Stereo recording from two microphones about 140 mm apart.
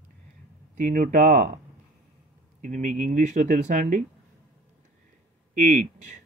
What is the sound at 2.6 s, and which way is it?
Speech, 65° right (ahead or behind).